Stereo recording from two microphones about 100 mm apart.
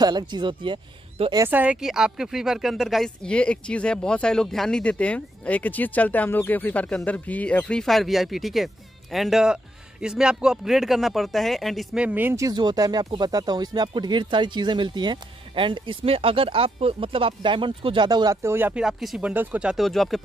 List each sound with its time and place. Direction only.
0.0 s speech: 45° right (ahead or behind); by 1.3 s 60° right (ahead or behind)
1.5 s speech: 15° right (ahead or behind)
1.8 s speech: 5° right (ahead or behind)
3.3 s speech: 10° left (ahead or behind)
12.0 s speech: 15° right (ahead or behind)
12.4 s speech: 40° right (ahead or behind)
18.3 s speech: 25° right (ahead or behind)
18.8 s speech: 5° right (ahead or behind)
19.2 s speech: 15° right (ahead or behind)
19.8 s speech: centre (ahead or behind)